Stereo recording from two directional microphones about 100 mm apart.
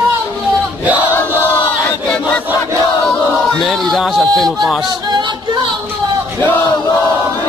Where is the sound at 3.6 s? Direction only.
Centre (ahead or behind).